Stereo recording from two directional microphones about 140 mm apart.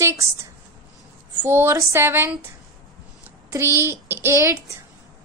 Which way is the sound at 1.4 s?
15° right (ahead or behind).